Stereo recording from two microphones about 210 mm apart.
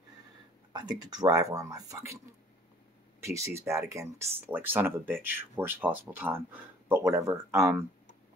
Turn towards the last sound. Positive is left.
turn(degrees=-15)  # may be behind; listen again after turning